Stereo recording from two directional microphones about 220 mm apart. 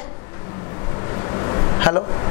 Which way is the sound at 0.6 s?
20° left (ahead or behind).